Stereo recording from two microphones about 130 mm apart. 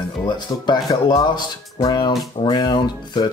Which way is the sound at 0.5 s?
35° left (ahead or behind).